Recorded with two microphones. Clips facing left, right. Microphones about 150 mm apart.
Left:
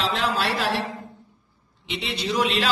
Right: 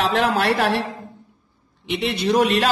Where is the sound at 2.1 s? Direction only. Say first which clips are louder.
Right 6 dB; 50° right (ahead or behind).